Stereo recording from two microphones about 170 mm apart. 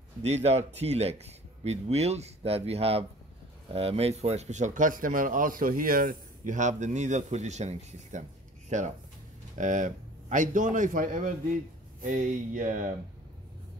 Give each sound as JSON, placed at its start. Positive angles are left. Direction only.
{"t": 0.2, "sound": "a man's voice", "side_deg": -40}